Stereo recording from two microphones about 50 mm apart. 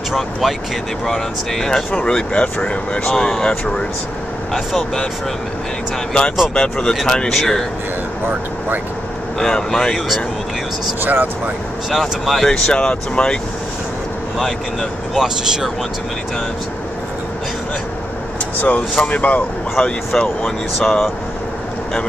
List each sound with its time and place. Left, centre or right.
0.1 s speech: centre
1.0 s speech: centre
1.9 s speech: left
6.5 s speech: centre
9.4 s speech: centre
9.9 s speech: centre
11.0 s speech: right
11.9 s speech: centre
12.4 s speech: centre
14.4 s speech: centre
15.2 s speech: centre
18.6 s speech: left
19.7 s speech: centre